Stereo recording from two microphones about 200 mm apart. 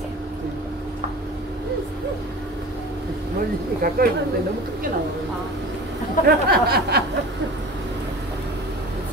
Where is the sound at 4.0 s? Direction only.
50° right (ahead or behind).